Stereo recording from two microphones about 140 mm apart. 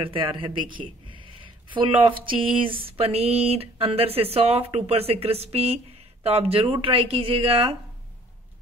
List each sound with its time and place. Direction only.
0.0 s a man's voice: 40° right (ahead or behind)